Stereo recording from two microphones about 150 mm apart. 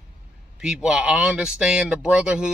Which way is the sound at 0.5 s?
5° right (ahead or behind).